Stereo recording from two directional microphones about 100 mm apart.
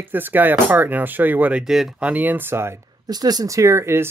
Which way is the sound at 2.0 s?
15° right (ahead or behind).